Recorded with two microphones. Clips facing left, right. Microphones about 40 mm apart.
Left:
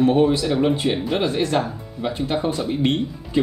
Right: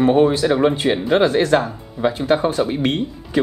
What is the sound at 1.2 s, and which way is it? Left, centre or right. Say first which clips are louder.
Speech: right 7 dB; right.